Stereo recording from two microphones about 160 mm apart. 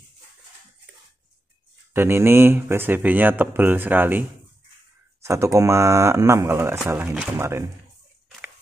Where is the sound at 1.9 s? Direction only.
15° right (ahead or behind).